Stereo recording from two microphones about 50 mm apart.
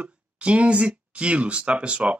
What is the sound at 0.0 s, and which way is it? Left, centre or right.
Speech, right.